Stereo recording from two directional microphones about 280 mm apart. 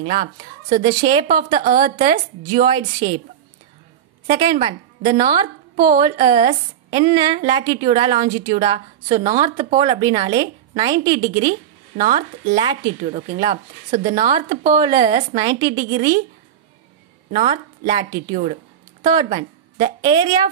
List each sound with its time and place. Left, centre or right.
0.0 s a woman's voice: right
2.5 s a woman's voice: centre
4.3 s a woman's voice: centre
5.9 s a woman's voice: centre
14.7 s a woman's voice: centre
17.3 s a woman's voice: right